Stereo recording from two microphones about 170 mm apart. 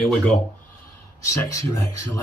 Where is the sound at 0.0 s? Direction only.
5° left (ahead or behind).